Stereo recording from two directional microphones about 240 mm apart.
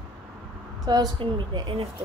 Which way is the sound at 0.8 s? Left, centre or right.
Centre.